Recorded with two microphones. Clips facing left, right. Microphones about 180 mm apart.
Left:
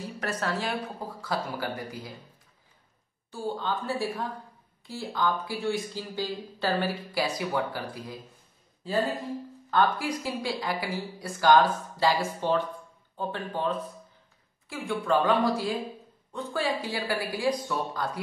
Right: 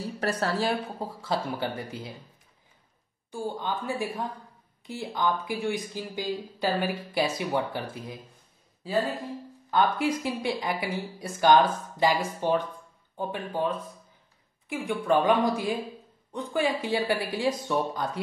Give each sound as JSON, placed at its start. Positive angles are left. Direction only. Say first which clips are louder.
{"t": 0.2, "sound": "speech", "louder": "right 4 dB", "side_deg": -30}
{"t": 3.3, "sound": "speech", "louder": "even", "side_deg": -15}
{"t": 9.7, "sound": "speech", "louder": "right 1 dB", "side_deg": -20}